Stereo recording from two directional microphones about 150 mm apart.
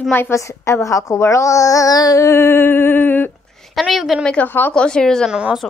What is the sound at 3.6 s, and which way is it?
A woman's voice, centre (ahead or behind).